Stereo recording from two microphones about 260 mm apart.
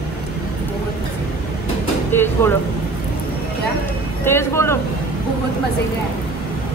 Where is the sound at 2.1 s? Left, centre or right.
Centre.